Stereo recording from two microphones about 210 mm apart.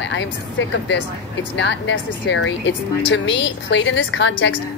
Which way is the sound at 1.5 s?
60° left (ahead or behind).